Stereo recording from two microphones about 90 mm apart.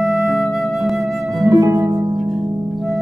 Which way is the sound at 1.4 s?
35° right (ahead or behind).